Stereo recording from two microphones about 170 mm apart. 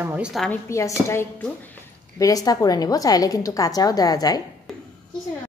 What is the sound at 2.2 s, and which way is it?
A woman's voice, 20° left (ahead or behind).